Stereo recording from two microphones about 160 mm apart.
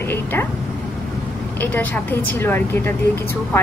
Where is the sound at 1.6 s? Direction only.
10° left (ahead or behind).